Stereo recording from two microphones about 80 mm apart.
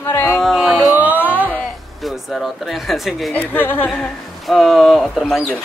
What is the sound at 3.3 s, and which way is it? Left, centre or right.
Speech, left.